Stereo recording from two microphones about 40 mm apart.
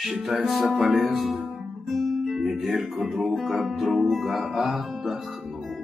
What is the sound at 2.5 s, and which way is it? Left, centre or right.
Music, centre.